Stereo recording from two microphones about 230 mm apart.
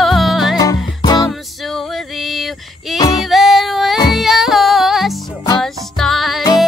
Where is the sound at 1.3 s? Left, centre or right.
Centre.